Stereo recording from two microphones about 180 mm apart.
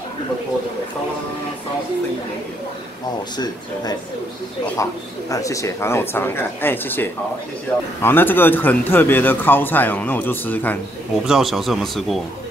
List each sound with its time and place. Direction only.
4.8 s speech: 15° left (ahead or behind)
11.2 s a man's voice: centre (ahead or behind)